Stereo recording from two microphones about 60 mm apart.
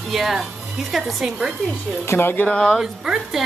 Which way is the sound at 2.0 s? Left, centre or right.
Left.